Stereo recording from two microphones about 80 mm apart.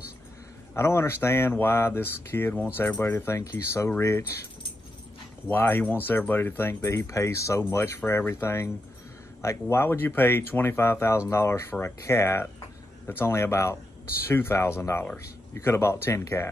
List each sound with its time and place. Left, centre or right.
0.7 s speech: left
5.5 s speech: left